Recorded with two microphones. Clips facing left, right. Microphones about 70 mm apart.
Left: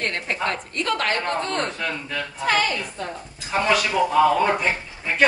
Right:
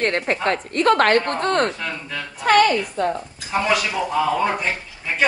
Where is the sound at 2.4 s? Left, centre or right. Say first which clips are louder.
Right 7 dB; right.